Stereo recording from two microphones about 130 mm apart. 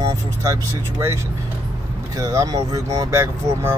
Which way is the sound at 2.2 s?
25° right (ahead or behind).